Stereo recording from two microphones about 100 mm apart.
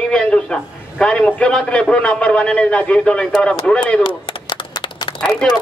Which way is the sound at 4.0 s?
50° left (ahead or behind).